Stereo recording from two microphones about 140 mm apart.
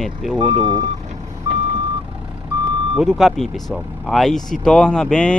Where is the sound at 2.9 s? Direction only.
Centre (ahead or behind).